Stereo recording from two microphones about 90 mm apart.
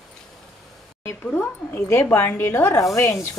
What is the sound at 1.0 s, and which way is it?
Speech, 25° left (ahead or behind).